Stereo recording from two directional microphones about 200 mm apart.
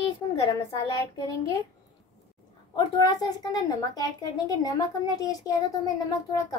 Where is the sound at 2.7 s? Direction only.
20° left (ahead or behind).